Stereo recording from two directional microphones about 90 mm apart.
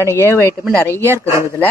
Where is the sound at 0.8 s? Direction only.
30° right (ahead or behind).